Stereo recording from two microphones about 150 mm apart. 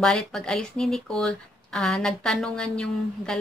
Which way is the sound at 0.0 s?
5° left (ahead or behind).